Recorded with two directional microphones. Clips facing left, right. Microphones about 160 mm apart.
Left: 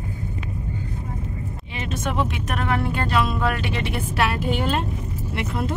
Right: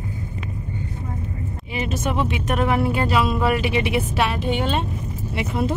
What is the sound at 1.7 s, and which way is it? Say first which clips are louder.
Speech: right 2 dB; 5° right (ahead or behind).